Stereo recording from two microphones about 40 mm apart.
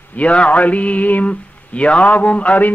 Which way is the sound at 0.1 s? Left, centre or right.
Left.